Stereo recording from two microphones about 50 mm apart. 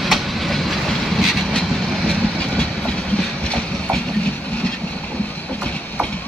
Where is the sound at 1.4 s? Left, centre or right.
Centre.